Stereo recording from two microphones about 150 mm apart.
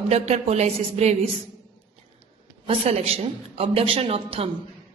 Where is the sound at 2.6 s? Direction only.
40° right (ahead or behind).